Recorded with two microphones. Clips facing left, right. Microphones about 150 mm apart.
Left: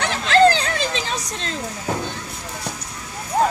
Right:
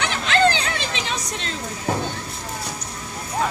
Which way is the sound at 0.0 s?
40° left (ahead or behind).